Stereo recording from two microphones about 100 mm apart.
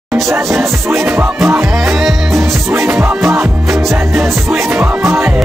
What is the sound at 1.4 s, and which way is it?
Music, 5° right (ahead or behind).